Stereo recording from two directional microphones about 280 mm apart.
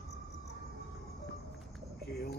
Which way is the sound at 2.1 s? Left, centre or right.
Left.